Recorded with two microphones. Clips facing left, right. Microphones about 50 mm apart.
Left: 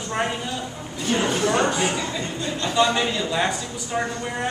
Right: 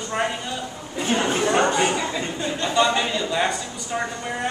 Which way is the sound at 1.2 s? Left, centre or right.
Right.